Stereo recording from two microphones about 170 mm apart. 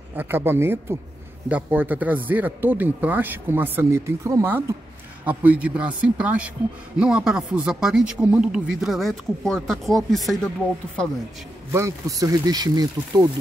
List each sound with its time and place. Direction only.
0.1 s speech: 10° right (ahead or behind)
11.7 s speech: 20° right (ahead or behind)